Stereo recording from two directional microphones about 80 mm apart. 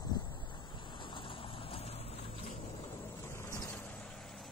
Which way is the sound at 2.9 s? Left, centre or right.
Left.